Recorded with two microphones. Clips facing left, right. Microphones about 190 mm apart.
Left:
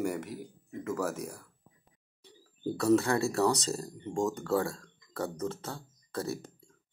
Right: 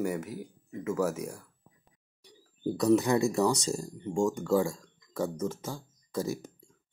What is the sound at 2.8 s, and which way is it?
Speech, 15° right (ahead or behind).